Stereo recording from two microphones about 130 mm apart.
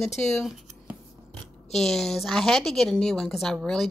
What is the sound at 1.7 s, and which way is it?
A woman's voice, centre (ahead or behind).